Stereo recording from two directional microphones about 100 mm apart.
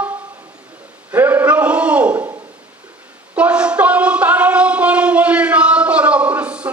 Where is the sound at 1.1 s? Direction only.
15° right (ahead or behind).